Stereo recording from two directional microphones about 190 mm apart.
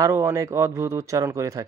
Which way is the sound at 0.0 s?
15° right (ahead or behind).